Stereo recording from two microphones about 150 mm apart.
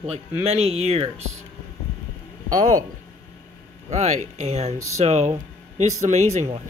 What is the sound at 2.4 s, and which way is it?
Speech, 60° right (ahead or behind).